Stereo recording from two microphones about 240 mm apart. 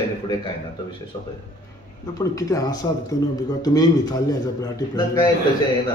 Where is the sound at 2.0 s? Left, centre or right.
Centre.